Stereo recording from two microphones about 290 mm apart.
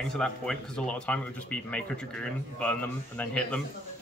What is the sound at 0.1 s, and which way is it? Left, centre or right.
Speech, centre.